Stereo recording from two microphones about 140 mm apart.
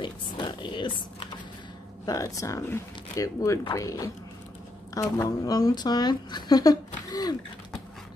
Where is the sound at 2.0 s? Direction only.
25° left (ahead or behind).